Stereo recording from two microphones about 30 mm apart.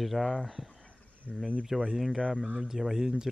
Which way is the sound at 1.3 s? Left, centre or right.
Right.